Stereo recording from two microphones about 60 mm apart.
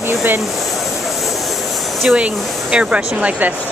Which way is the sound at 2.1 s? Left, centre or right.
Centre.